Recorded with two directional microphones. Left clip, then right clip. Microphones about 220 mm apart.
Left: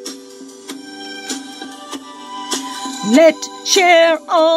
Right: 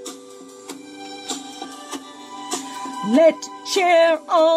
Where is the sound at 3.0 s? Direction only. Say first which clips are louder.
Left 4 dB; 5° left (ahead or behind).